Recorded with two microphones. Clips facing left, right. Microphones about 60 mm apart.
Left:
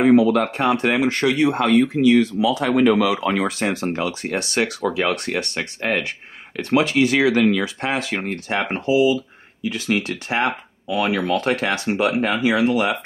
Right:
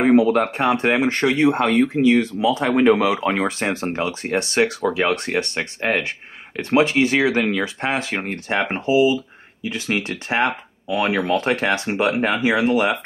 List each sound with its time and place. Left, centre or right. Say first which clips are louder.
0.0 s speech: even; right